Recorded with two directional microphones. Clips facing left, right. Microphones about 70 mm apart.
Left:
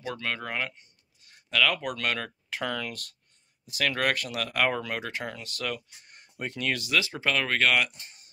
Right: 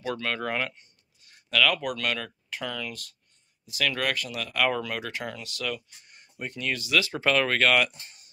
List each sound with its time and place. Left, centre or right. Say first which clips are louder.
0.0 s speech: right 3 dB; centre
1.5 s speech: right 1 dB; centre
1.8 s speech: right 1 dB; left
2.6 s speech: left 2 dB; left
3.6 s speech: left 1 dB; left
4.1 s speech: left 2 dB; left
4.6 s speech: right 1 dB; left
5.4 s speech: right 1 dB; left
6.0 s a sound: left 1 dB; left
6.4 s speech: left 1 dB; left
7.2 s speech: right 3 dB; centre